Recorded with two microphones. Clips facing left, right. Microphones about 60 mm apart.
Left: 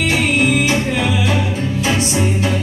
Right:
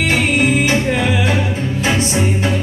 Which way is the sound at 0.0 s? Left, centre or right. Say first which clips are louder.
Right 1 dB; right.